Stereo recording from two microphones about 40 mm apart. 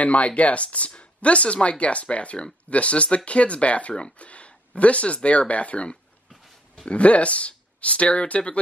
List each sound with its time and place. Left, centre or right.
0.0 s speech: left